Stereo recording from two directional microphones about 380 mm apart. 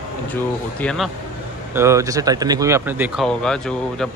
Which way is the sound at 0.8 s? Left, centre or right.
Centre.